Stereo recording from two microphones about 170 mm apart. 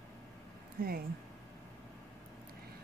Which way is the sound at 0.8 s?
60° right (ahead or behind).